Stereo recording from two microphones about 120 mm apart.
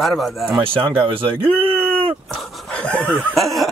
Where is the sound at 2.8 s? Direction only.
10° left (ahead or behind).